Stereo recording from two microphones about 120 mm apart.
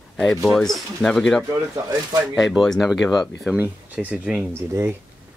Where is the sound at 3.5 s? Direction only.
15° right (ahead or behind).